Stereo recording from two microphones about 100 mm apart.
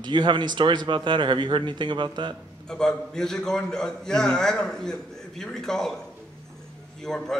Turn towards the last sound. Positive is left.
turn(degrees=5)  # may be behind; listen again after turning